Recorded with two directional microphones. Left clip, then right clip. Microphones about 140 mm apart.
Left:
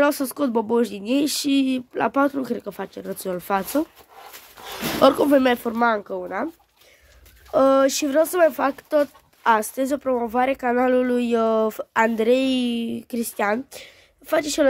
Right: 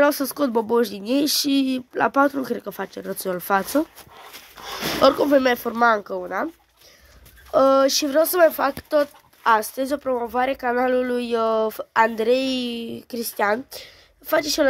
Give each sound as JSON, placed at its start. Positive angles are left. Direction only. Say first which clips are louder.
{"t": 0.0, "sound": "speech", "louder": "right 1 dB", "side_deg": 15}
{"t": 5.0, "sound": "speech", "louder": "even", "side_deg": 35}
{"t": 7.5, "sound": "speech", "louder": "right 1 dB", "side_deg": 30}